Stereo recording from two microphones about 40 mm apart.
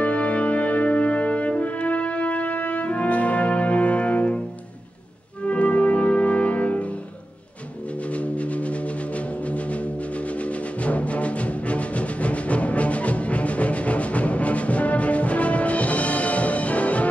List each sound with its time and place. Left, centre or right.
0.0 s brass instrument: left
5.5 s music: left
8.1 s music: left